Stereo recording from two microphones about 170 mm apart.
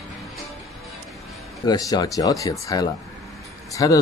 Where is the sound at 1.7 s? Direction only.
25° left (ahead or behind).